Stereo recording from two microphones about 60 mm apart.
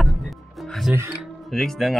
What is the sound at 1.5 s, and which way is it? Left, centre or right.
Speech, centre.